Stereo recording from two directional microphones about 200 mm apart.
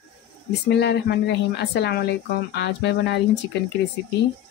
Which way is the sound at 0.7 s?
55° left (ahead or behind).